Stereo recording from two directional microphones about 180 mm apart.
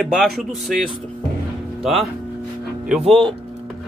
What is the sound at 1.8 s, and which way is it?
Speech, centre (ahead or behind).